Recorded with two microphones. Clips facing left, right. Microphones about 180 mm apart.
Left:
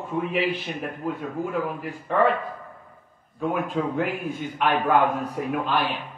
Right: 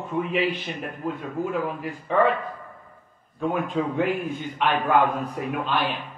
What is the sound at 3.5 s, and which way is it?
Speech, 5° left (ahead or behind).